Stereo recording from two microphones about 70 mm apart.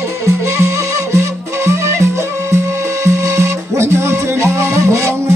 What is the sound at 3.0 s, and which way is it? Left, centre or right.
Music, right.